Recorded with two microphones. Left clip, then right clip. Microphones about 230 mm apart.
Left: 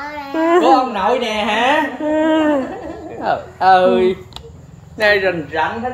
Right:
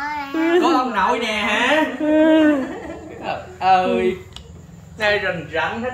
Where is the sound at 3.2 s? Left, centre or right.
Left.